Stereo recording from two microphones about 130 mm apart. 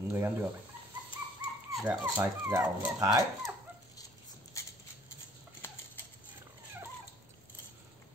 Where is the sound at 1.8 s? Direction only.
10° right (ahead or behind).